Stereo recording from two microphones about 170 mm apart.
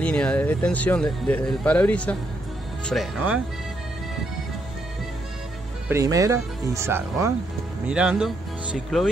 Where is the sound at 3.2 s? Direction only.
10° right (ahead or behind).